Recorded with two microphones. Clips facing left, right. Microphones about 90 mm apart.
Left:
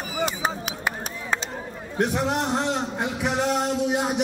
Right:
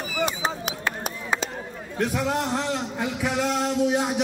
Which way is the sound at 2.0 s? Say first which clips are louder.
Left 1 dB; 20° left (ahead or behind).